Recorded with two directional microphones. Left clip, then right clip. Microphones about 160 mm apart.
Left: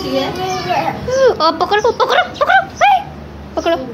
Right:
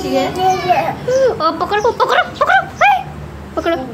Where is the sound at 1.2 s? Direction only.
15° left (ahead or behind); by 3.0 s centre (ahead or behind).